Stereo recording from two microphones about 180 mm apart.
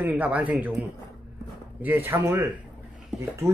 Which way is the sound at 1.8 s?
10° right (ahead or behind).